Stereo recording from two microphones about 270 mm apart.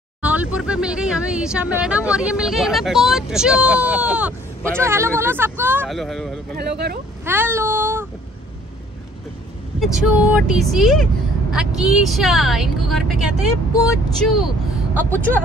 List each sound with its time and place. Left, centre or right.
0.2 s speech: centre
6.5 s speech: right
7.2 s speech: centre
9.8 s speech: centre